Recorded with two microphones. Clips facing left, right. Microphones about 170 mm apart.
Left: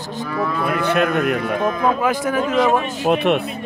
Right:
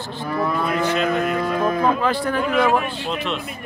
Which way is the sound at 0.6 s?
60° left (ahead or behind).